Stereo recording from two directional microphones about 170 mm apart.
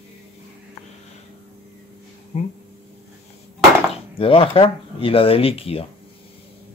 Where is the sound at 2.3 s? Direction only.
40° left (ahead or behind).